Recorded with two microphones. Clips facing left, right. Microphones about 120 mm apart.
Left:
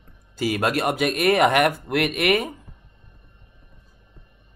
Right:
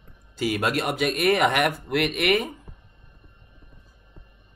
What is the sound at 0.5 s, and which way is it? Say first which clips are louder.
A man's voice: left 3 dB; 45° left (ahead or behind).